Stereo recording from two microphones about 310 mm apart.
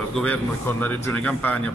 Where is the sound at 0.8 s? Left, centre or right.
Centre.